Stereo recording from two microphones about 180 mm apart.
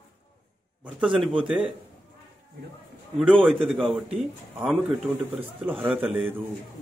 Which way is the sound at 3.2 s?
5° right (ahead or behind).